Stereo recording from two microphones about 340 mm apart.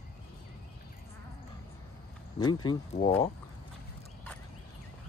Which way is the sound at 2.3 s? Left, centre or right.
Centre.